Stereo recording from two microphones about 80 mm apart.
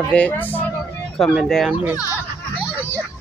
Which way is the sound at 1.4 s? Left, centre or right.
Centre.